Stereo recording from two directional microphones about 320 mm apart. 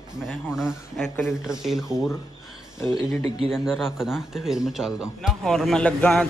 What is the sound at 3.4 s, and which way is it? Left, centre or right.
Speech, centre.